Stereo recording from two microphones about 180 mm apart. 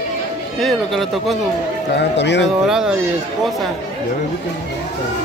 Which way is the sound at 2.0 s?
75° left (ahead or behind).